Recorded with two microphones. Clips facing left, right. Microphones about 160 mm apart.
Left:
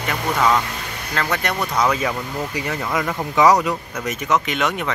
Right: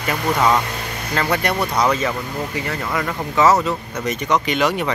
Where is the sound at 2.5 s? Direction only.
15° left (ahead or behind).